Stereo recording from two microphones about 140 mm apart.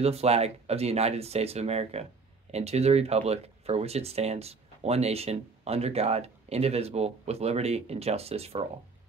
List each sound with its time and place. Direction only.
0.0 s speech: 50° right (ahead or behind)